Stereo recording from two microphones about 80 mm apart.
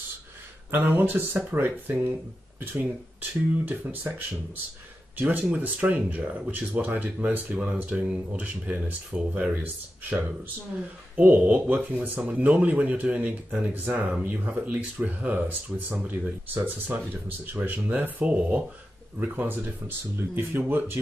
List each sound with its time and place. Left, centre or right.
0.7 s speech: right
5.2 s speech: centre